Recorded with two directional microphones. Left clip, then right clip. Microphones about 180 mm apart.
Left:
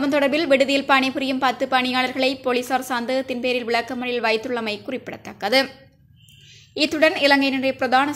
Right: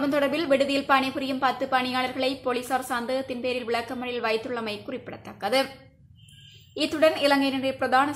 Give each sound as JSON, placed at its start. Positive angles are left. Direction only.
{"t": 0.0, "sound": "a woman's voice", "side_deg": 30}
{"t": 6.7, "sound": "a woman's voice", "side_deg": 35}